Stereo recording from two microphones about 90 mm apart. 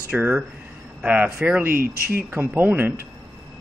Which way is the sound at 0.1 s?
15° right (ahead or behind).